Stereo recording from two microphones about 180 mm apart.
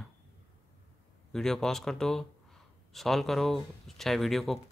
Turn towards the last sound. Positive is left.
turn(degrees=0)  # may be behind; listen again after turning